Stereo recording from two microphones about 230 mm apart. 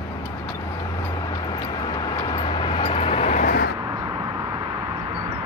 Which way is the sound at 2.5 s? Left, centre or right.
Left.